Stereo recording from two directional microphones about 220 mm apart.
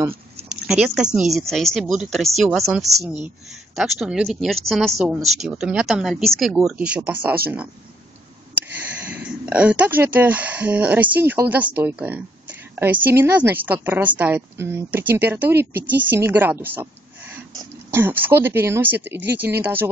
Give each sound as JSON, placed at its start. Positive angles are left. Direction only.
{"t": 0.0, "sound": "a sound", "side_deg": -25}
{"t": 0.7, "sound": "speech", "side_deg": -5}
{"t": 9.1, "sound": "speech", "side_deg": -5}
{"t": 17.9, "sound": "speech", "side_deg": -10}